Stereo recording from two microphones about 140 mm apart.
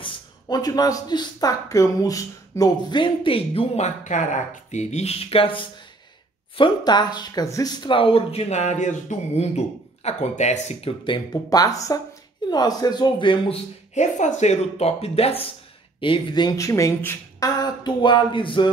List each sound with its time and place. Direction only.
0.0 s speech: 30° left (ahead or behind)
11.5 s speech: 25° left (ahead or behind)
13.9 s speech: 60° left (ahead or behind)
16.0 s speech: 35° left (ahead or behind); by 17.5 s 20° left (ahead or behind)
17.5 s speech: 30° left (ahead or behind)